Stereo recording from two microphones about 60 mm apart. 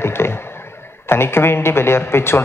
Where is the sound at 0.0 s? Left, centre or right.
Left.